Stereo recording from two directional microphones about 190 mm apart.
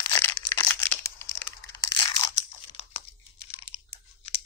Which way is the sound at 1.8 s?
20° left (ahead or behind).